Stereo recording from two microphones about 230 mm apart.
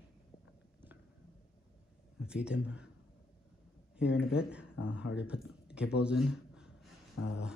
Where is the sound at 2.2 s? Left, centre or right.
Centre.